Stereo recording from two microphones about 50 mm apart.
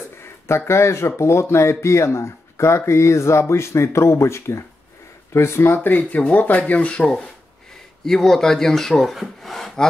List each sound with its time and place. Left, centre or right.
0.5 s speech: left
5.9 s speech: left
8.0 s speech: centre